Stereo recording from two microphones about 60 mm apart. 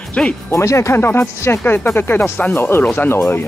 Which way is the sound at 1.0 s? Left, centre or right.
Left.